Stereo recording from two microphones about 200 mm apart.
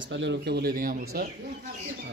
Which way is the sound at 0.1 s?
60° right (ahead or behind).